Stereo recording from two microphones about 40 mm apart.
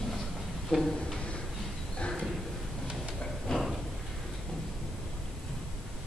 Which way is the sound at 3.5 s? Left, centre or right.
Centre.